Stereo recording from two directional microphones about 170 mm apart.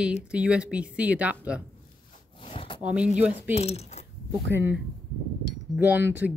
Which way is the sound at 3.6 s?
40° left (ahead or behind).